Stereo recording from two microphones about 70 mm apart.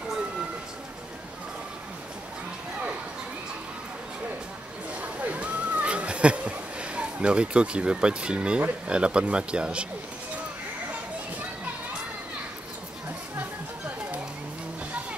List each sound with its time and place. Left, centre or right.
5.0 s a sound: right
8.8 s speech: centre
13.4 s music: right